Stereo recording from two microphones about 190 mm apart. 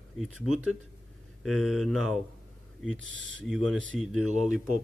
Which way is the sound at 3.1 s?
75° right (ahead or behind).